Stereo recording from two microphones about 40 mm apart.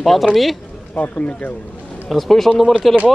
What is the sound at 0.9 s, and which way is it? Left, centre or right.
Speech, left.